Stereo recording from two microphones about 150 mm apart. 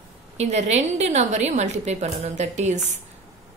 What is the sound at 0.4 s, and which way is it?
A woman's voice, 50° right (ahead or behind).